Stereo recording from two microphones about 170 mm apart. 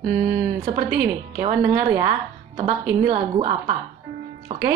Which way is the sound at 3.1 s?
35° right (ahead or behind).